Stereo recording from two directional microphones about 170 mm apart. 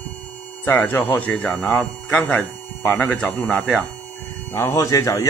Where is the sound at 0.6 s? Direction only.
10° left (ahead or behind).